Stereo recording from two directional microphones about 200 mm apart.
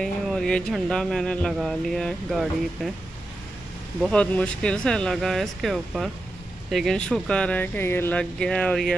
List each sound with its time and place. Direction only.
0.0 s speech: centre (ahead or behind)
4.0 s speech: 5° left (ahead or behind)